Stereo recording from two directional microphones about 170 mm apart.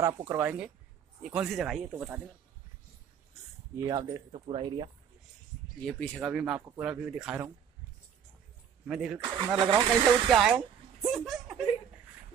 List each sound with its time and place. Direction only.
0.0 s speech: 15° right (ahead or behind)
3.7 s speech: 20° right (ahead or behind)
5.9 s speech: 5° left (ahead or behind)
8.8 s speech: 5° right (ahead or behind)
9.6 s speech: 20° right (ahead or behind)
10.3 s a sound: 5° right (ahead or behind)